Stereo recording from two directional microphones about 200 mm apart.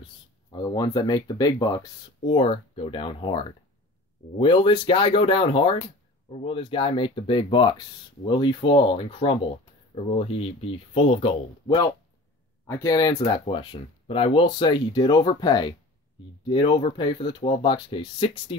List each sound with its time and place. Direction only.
0.5 s speech: 20° left (ahead or behind)